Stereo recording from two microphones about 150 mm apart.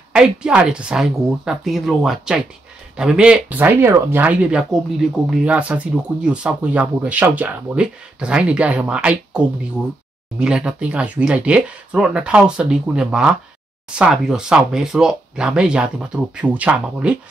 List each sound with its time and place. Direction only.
0.1 s speech: 5° right (ahead or behind)
10.4 s speech: 5° right (ahead or behind)